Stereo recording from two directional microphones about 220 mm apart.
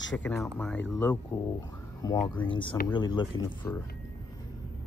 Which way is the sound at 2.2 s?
20° left (ahead or behind).